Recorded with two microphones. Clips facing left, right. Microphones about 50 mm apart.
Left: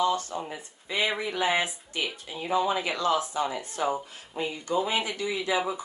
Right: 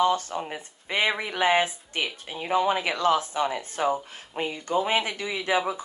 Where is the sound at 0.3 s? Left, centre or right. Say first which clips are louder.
Right 2 dB; right.